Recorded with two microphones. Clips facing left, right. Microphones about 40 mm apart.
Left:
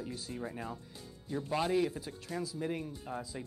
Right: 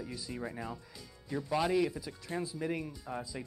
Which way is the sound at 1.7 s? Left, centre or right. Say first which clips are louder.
Right 1 dB; left.